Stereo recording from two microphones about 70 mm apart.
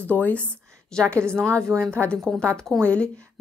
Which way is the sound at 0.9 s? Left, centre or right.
Centre.